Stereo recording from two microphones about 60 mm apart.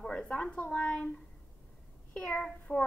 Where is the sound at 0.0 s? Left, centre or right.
Centre.